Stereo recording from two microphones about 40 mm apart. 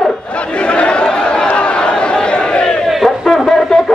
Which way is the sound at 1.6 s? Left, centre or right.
Left.